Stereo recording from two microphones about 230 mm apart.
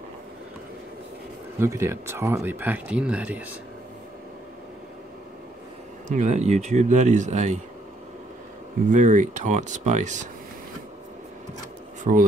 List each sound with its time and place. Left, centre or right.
1.6 s speech: centre
6.0 s a man's voice: right
8.9 s a man's voice: right
12.0 s speech: right